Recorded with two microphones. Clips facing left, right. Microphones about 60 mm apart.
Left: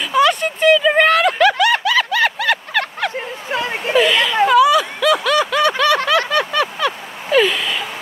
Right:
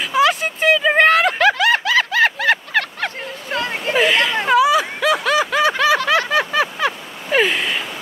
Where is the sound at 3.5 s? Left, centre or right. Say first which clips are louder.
Even; centre.